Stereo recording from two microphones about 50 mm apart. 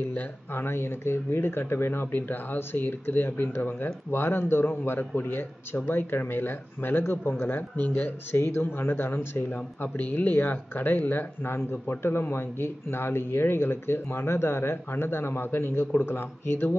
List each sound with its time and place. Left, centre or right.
0.1 s speech: left
8.4 s speech: left